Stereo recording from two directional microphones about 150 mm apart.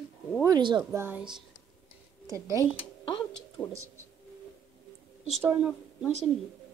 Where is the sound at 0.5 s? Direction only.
30° right (ahead or behind).